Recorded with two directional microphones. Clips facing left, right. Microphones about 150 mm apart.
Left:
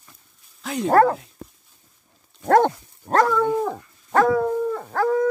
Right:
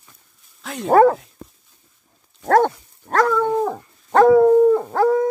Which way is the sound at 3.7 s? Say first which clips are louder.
Right 2 dB; 25° right (ahead or behind).